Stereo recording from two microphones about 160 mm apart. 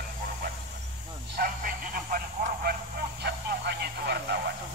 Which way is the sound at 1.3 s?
65° right (ahead or behind).